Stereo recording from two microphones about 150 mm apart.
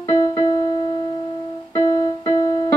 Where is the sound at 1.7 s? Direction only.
30° left (ahead or behind).